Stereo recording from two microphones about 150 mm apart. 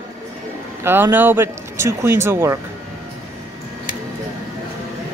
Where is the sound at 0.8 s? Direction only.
15° right (ahead or behind).